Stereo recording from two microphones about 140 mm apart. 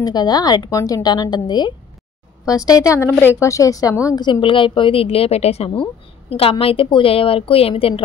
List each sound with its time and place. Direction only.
0.0 s a woman's voice: 30° left (ahead or behind)